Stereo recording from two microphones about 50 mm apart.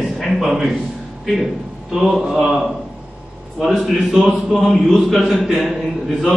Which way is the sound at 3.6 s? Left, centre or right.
Centre.